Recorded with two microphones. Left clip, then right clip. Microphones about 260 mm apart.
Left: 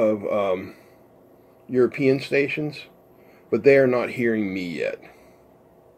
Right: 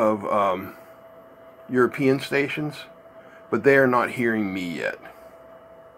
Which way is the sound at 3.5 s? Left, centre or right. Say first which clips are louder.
Left 1 dB; right.